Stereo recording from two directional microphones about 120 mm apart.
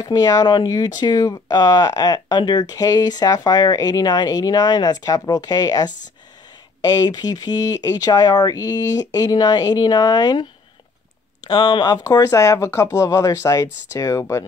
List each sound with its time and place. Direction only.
0.0 s speech: 30° left (ahead or behind)
11.4 s speech: 40° left (ahead or behind)